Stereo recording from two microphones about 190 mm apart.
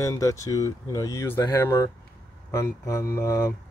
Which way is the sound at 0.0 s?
15° left (ahead or behind).